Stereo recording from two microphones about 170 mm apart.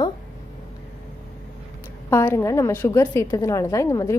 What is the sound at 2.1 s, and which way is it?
A woman's voice, 15° left (ahead or behind).